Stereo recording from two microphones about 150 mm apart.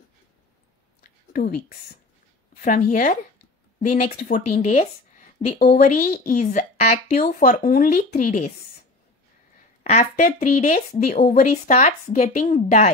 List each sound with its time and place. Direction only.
2.5 s a woman's voice: 60° left (ahead or behind)
5.6 s a woman's voice: 75° left (ahead or behind); by 8.5 s 60° left (ahead or behind)
9.8 s a woman's voice: 50° left (ahead or behind)